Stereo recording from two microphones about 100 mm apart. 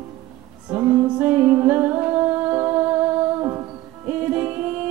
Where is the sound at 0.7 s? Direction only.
30° right (ahead or behind).